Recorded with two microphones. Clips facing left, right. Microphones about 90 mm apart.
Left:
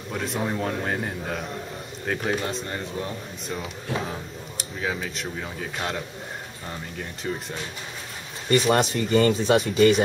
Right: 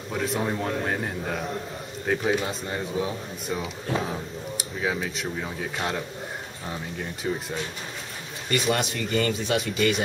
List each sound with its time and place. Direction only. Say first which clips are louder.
0.1 s speech: right 1 dB; centre (ahead or behind)
7.3 s speech: right 2 dB; 10° right (ahead or behind)
8.5 s speech: left 5 dB; 40° left (ahead or behind)